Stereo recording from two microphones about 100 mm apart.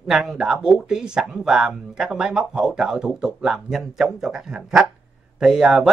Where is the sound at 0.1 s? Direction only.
5° right (ahead or behind).